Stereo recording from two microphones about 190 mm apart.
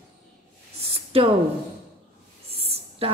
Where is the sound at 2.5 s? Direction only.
30° right (ahead or behind).